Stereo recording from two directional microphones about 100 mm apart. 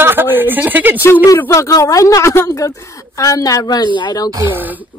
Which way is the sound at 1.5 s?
35° left (ahead or behind).